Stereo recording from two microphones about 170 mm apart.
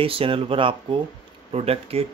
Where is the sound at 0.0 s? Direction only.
35° right (ahead or behind).